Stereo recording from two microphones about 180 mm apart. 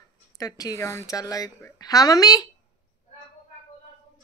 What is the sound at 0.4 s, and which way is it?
A woman's voice, 20° left (ahead or behind).